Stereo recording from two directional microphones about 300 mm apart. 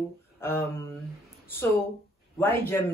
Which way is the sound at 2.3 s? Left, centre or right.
Centre.